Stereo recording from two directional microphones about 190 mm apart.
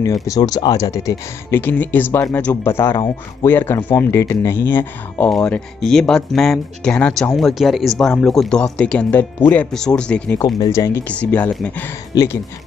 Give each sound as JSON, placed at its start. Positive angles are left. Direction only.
{"t": 0.0, "sound": "speech", "side_deg": 20}
{"t": 10.6, "sound": "speech", "side_deg": 15}
{"t": 12.1, "sound": "speech", "side_deg": 20}